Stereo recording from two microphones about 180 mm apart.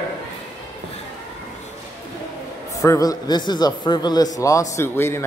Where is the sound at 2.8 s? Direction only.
20° left (ahead or behind).